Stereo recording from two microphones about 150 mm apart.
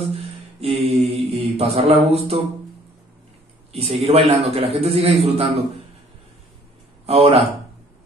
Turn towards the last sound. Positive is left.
turn(degrees=-40)  # may be behind; listen again after turning